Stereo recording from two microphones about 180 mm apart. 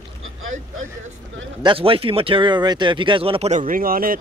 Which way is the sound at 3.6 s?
50° right (ahead or behind).